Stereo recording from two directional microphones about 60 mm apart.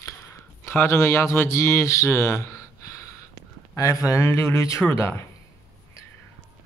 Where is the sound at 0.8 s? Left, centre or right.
Left.